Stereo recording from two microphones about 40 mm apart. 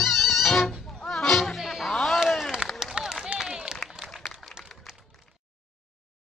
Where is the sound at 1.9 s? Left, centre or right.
Centre.